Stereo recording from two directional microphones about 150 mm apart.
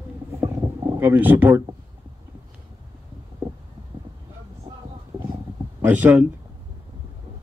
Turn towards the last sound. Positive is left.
turn(degrees=-10)  # may be behind; listen again after turning